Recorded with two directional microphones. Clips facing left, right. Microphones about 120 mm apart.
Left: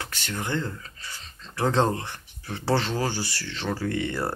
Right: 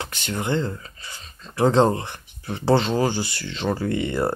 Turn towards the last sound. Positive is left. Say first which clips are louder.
# right 4 dB
turn(degrees=-15)  # may be behind; listen again after turning